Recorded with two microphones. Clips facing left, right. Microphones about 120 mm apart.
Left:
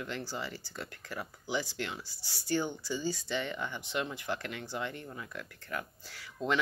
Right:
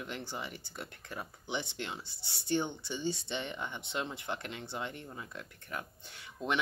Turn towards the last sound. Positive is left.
turn(degrees=-25)  # may be behind; listen again after turning